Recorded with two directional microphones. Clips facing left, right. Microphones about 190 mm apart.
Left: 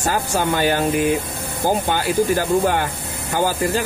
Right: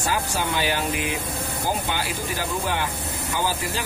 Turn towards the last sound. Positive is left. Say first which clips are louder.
# left 7 dB
turn(degrees=50)  # may be behind; listen again after turning